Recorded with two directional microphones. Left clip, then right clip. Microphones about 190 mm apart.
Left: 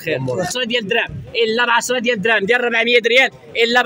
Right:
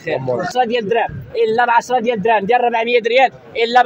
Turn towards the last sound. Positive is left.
turn(degrees=45)  # may be behind; listen again after turning